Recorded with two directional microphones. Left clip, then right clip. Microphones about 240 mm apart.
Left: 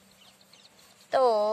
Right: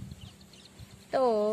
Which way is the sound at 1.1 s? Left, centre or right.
Left.